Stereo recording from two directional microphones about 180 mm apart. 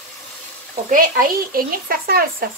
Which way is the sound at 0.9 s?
50° right (ahead or behind).